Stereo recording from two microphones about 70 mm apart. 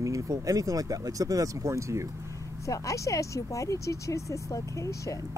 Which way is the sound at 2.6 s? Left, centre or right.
Left.